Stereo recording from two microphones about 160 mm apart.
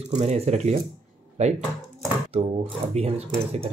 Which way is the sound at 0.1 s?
45° right (ahead or behind).